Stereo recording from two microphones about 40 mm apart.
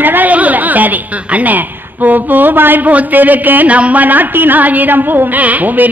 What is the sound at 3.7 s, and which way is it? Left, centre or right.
A woman's voice, right.